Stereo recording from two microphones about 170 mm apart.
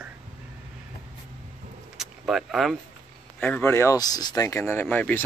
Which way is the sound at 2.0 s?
Centre (ahead or behind).